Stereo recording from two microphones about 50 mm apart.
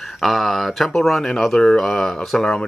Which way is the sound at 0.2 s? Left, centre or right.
Centre.